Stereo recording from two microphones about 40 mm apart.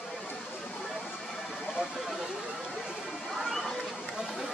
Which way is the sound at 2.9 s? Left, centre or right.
Centre.